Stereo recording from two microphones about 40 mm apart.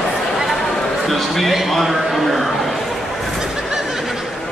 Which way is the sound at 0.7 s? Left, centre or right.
Centre.